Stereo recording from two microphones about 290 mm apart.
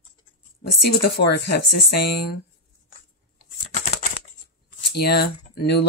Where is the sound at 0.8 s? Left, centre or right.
Left.